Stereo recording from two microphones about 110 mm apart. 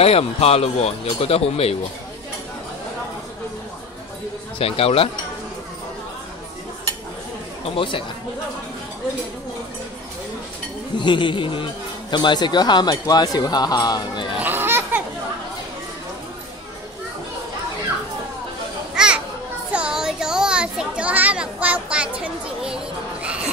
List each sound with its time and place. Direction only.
0.0 s speech: 65° left (ahead or behind)
4.6 s speech: 60° left (ahead or behind)
7.7 s speech: 50° left (ahead or behind)
11.0 s speech: 45° left (ahead or behind)
14.4 s a sound: 20° right (ahead or behind)
18.9 s children playing: 10° right (ahead or behind)